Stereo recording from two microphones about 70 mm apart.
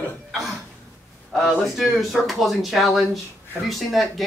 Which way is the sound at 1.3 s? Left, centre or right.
Centre.